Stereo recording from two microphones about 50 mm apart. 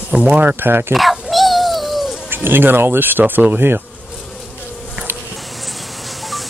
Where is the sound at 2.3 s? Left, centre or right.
Right.